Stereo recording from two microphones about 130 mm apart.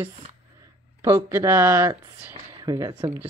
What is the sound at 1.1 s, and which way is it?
Speech, 20° right (ahead or behind).